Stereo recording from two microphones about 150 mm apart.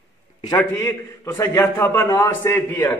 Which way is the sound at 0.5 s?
15° left (ahead or behind).